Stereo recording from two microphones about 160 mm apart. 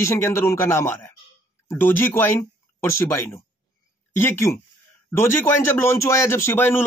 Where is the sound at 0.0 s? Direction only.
15° left (ahead or behind).